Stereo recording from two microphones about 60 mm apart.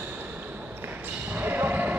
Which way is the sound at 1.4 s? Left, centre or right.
Right.